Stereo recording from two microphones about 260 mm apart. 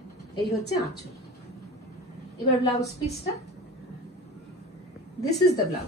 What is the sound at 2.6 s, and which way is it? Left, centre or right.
Speech, centre.